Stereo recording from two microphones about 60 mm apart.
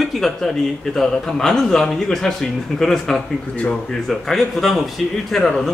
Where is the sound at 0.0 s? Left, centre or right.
Centre.